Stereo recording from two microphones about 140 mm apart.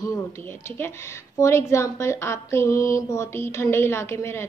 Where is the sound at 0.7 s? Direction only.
15° left (ahead or behind).